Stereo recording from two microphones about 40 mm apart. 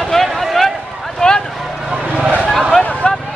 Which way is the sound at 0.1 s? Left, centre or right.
Centre.